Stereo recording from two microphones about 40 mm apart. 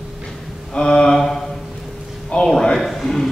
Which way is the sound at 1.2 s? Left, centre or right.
Centre.